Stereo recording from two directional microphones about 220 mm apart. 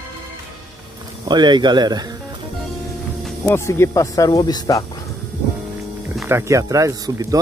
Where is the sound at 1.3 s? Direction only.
20° right (ahead or behind).